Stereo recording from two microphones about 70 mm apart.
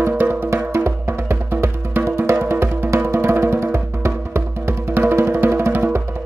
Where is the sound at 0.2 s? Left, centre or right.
Right.